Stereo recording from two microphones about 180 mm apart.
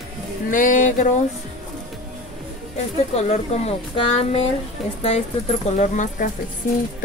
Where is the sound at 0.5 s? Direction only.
45° left (ahead or behind).